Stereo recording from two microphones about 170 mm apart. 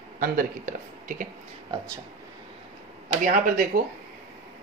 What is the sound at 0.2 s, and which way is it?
Speech, 55° right (ahead or behind).